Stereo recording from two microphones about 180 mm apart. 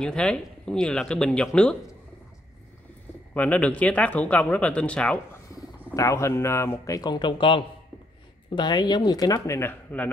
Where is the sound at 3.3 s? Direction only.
5° left (ahead or behind).